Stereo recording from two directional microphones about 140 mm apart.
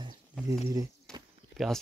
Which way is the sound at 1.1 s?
5° left (ahead or behind).